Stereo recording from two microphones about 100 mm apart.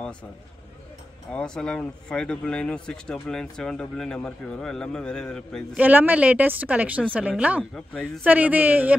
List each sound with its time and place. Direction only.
1.3 s speech: 10° left (ahead or behind)
5.8 s speech: 15° right (ahead or behind)